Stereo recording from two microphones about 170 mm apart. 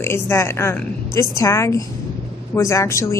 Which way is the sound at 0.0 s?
15° left (ahead or behind).